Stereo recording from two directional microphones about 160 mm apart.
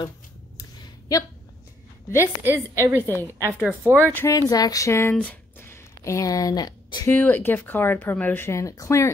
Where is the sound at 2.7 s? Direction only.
20° right (ahead or behind).